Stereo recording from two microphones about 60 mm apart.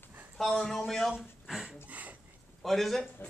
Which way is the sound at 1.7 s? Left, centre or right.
Right.